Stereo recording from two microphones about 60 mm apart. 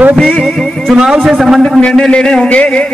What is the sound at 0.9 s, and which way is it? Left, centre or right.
Speech, centre.